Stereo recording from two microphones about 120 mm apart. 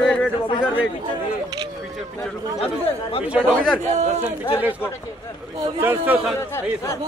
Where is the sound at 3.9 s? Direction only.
75° right (ahead or behind).